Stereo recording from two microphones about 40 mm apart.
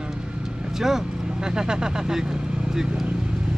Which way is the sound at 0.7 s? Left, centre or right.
Centre.